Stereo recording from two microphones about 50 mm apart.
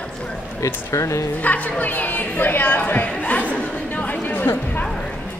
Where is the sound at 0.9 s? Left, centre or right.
Left.